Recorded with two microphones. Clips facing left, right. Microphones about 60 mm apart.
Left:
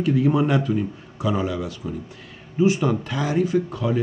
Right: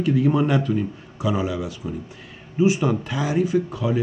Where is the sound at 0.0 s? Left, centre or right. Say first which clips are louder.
Even; centre.